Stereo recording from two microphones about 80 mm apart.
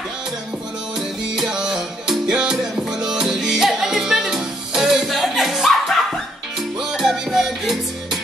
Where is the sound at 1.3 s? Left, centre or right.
Centre.